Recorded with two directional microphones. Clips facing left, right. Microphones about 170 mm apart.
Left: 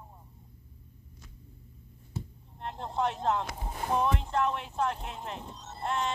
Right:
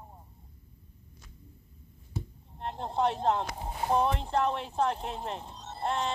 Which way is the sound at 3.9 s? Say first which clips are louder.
Even; 35° right (ahead or behind).